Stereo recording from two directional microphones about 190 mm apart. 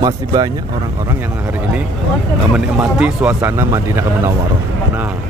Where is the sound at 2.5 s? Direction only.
5° right (ahead or behind).